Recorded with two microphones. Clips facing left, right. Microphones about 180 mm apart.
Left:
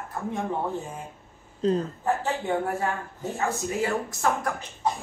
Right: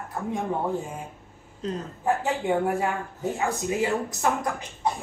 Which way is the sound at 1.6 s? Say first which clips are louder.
Left 7 dB; 30° left (ahead or behind).